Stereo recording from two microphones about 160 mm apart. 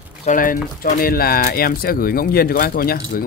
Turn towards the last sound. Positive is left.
turn(degrees=70)  # may be behind; listen again after turning